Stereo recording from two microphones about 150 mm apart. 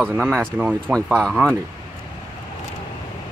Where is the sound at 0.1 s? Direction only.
10° right (ahead or behind).